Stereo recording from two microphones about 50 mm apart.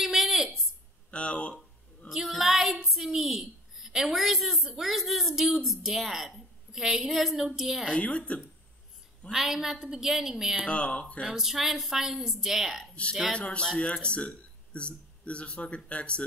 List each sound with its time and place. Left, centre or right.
0.0 s a sound: centre
1.1 s a sound: left
2.0 s a woman's voice: centre
8.0 s speech: left
9.3 s a woman's voice: centre
10.7 s speech: left
11.2 s a woman's voice: centre
13.4 s speech: left